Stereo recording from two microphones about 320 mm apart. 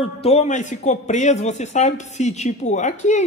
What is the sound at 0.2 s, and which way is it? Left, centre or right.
Speech, centre.